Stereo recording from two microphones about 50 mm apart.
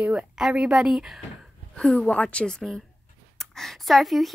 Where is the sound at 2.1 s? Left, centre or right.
Left.